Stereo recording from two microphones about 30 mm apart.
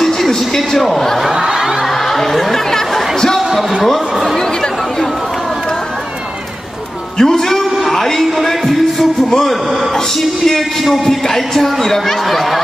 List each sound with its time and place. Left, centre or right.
0.6 s speech: centre
1.3 s music: centre
2.0 s chatter: centre
7.2 s a man's voice: centre
7.9 s a sound: centre
8.4 s music: centre
9.9 s speech: centre